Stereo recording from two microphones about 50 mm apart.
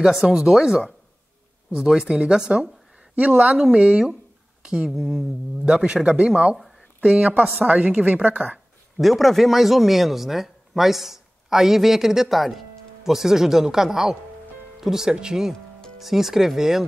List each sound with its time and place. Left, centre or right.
0.0 s a woman's voice: centre
4.9 s speech: centre
5.7 s a woman's voice: centre; by 8.5 s right
8.9 s speech: centre